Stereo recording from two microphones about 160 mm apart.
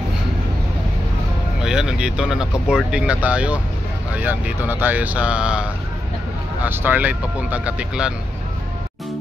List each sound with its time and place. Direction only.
1.6 s speech: 5° right (ahead or behind)